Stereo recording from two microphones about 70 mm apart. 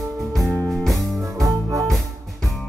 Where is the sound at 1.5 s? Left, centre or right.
Right.